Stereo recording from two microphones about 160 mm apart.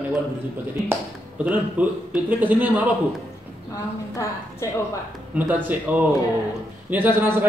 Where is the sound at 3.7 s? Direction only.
20° left (ahead or behind).